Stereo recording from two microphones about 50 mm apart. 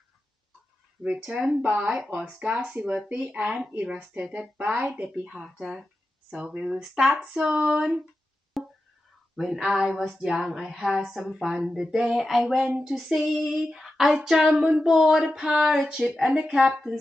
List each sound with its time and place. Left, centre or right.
1.0 s child singing: centre
1.6 s speech: right
5.2 s child singing: centre
8.6 s a sound: centre
9.4 s child singing: centre
11.1 s female singing: centre
11.5 s child singing: centre
12.2 s female singing: centre
14.1 s child singing: centre